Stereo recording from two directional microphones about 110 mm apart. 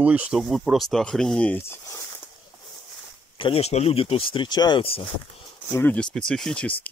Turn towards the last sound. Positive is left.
turn(degrees=5)  # may be behind; listen again after turning